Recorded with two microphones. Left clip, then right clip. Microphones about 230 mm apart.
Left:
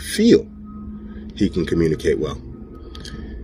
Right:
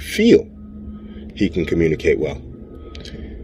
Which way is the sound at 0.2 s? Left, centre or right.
Centre.